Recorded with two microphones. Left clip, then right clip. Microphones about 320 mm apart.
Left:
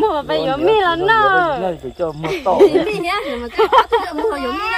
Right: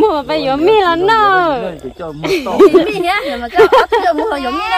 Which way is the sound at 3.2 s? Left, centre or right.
Right.